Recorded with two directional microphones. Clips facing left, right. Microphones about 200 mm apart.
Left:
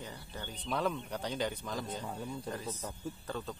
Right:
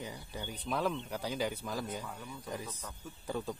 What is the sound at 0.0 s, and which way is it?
A man's voice, 10° right (ahead or behind).